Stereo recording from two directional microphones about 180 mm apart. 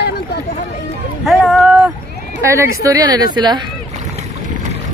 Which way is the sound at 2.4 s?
15° right (ahead or behind).